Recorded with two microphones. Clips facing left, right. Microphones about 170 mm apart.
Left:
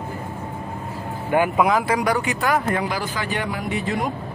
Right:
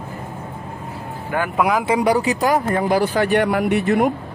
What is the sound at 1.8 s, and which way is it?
Speech, 30° right (ahead or behind).